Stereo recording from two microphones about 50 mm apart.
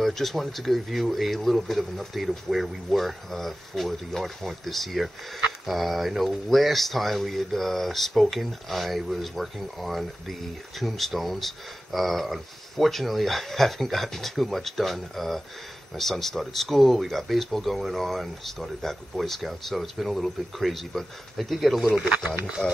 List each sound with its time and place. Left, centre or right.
0.0 s speech: centre
22.2 s speech: right